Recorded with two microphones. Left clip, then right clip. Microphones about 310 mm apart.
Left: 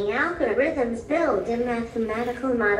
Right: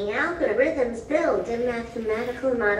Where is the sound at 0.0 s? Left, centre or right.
Centre.